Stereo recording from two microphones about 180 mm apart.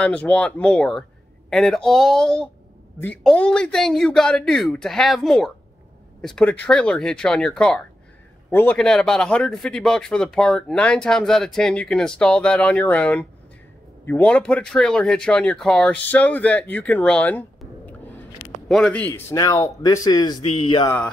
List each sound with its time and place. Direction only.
0.0 s a man's voice: 5° left (ahead or behind); by 20.9 s 25° left (ahead or behind)